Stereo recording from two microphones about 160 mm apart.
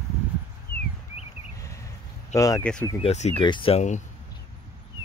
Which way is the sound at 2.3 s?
20° left (ahead or behind).